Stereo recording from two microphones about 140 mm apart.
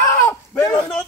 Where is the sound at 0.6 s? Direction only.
15° left (ahead or behind).